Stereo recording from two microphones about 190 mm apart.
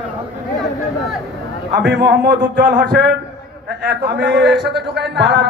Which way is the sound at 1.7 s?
60° right (ahead or behind).